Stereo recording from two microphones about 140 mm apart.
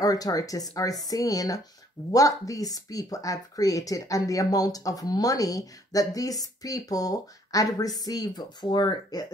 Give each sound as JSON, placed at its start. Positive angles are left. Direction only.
{"t": 0.0, "sound": "speech", "side_deg": 25}